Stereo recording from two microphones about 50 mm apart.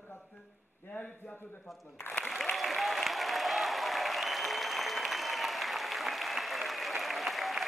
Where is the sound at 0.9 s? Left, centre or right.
Left.